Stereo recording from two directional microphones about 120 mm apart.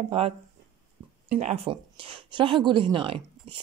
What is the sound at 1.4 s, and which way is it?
A woman's voice, 55° right (ahead or behind).